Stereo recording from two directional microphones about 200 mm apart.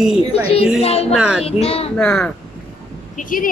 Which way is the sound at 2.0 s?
5° left (ahead or behind).